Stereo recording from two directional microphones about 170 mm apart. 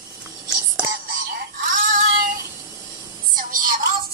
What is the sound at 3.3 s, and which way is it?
Music, 55° right (ahead or behind).